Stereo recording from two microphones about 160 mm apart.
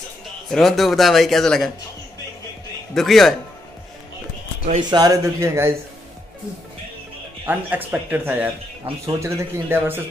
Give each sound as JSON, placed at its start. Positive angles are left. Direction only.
{"t": 0.5, "sound": "a man's voice", "side_deg": 0}
{"t": 2.9, "sound": "a man's voice", "side_deg": 0}
{"t": 4.8, "sound": "speech", "side_deg": -25}
{"t": 7.4, "sound": "speech", "side_deg": -10}